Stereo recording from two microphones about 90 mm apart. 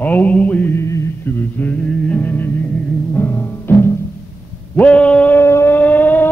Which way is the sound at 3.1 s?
20° left (ahead or behind).